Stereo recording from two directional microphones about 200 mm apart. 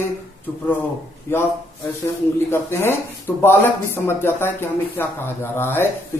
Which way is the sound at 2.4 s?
10° left (ahead or behind).